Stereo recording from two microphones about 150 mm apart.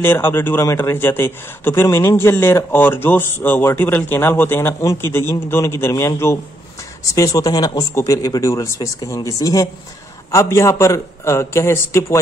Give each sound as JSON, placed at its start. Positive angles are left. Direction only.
{"t": 0.0, "sound": "a man's voice", "side_deg": 15}